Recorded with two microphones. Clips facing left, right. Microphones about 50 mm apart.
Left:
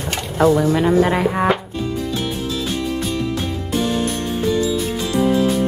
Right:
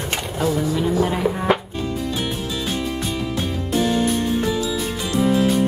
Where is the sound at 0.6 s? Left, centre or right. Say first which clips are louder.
Left 5 dB; left.